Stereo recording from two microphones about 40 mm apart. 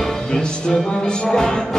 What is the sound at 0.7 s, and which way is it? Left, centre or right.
Music, left.